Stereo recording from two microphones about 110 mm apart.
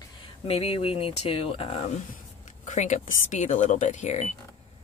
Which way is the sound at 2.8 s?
90° left.